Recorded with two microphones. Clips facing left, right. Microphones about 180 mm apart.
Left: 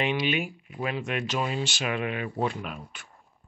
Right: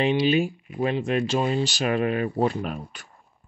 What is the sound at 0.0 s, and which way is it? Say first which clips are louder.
Speech: right 6 dB; 30° right (ahead or behind).